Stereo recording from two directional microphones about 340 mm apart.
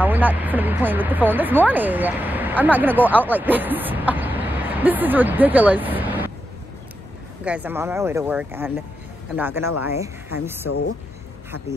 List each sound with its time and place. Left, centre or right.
0.0 s speech: centre
7.4 s speech: centre
10.7 s speech: left